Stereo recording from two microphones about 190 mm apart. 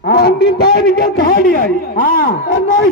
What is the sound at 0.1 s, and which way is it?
A man's voice, 55° left (ahead or behind).